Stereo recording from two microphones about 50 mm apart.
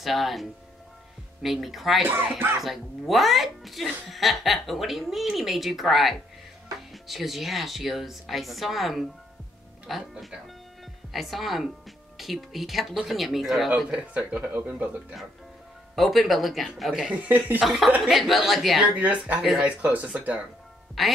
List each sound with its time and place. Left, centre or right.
0.0 s speech: centre
2.0 s speech: right
2.6 s speech: centre
11.1 s speech: centre
13.8 s speech: right
16.0 s speech: centre
17.1 s speech: right
17.6 s speech: centre
18.9 s speech: right
21.0 s speech: centre